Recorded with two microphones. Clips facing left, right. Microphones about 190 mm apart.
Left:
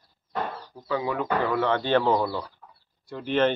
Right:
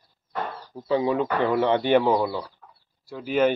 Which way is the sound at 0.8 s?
25° right (ahead or behind).